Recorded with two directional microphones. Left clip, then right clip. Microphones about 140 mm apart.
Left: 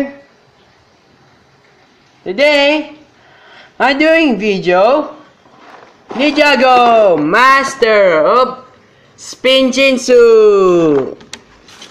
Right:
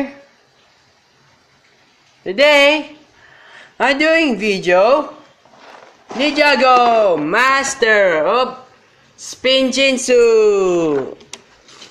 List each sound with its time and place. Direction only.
2.2 s speech: 20° right (ahead or behind)
3.4 s speech: centre (ahead or behind)
6.0 s a man's voice: 5° left (ahead or behind)
11.1 s a sound: centre (ahead or behind)